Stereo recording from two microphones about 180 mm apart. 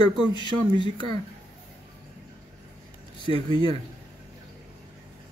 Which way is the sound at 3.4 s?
25° left (ahead or behind).